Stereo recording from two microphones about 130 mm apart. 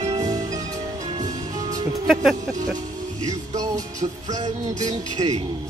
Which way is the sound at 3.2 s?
25° right (ahead or behind).